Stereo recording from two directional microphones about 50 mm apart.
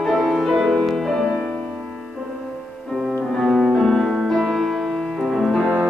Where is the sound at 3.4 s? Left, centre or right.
Centre.